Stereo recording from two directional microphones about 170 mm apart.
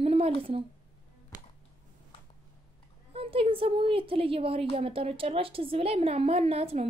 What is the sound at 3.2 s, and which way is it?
Speech, 35° right (ahead or behind).